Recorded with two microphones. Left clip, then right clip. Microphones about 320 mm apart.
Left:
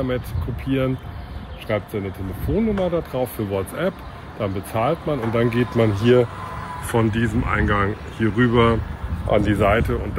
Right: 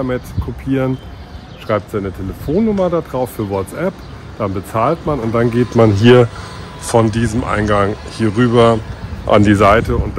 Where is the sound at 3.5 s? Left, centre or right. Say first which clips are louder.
Right 4 dB; centre.